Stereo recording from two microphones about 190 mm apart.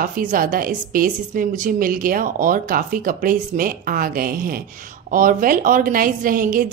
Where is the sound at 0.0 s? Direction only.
45° right (ahead or behind).